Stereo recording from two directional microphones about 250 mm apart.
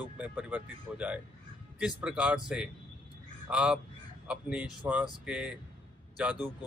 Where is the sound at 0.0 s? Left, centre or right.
Centre.